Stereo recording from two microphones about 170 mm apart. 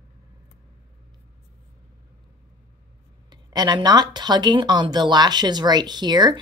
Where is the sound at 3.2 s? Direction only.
25° right (ahead or behind).